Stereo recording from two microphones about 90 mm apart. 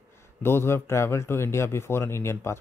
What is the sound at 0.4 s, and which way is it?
Speech, 25° left (ahead or behind).